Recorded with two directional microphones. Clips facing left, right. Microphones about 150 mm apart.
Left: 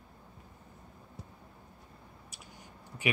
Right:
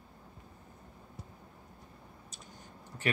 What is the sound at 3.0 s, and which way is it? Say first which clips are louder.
Speech: left 1 dB; 10° left (ahead or behind).